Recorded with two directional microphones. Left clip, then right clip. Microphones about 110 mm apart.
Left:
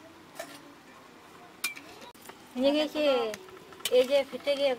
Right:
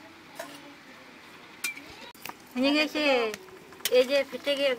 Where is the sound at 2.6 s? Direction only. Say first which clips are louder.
Right 1 dB; 30° right (ahead or behind).